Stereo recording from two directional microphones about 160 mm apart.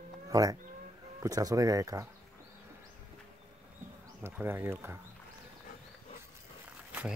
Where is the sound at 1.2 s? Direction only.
20° right (ahead or behind).